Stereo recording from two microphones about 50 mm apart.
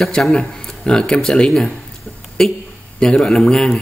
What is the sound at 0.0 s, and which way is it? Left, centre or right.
Speech, centre.